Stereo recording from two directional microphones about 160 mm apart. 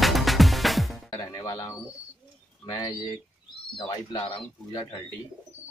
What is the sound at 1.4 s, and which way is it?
Bird, 20° left (ahead or behind).